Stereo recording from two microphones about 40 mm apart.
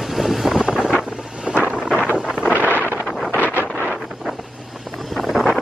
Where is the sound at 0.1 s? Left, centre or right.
Centre.